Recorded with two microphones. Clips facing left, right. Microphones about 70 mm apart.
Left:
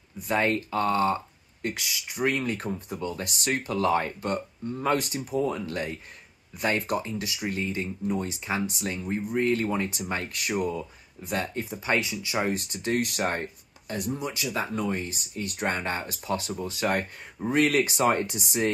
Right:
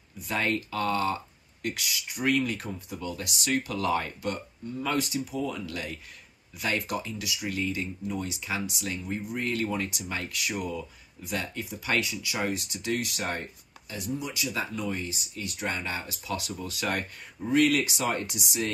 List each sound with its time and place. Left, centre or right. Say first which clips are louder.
0.2 s speech: left 4 dB; left